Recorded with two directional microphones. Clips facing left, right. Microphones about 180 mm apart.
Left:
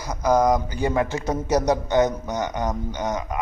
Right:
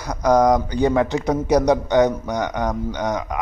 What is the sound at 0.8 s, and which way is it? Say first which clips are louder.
A man's voice: right 5 dB; 20° right (ahead or behind).